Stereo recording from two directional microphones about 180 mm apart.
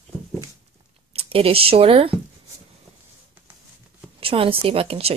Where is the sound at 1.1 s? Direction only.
30° right (ahead or behind).